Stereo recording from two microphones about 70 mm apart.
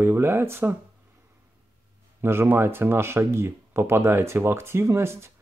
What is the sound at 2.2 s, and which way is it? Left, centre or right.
Speech, right.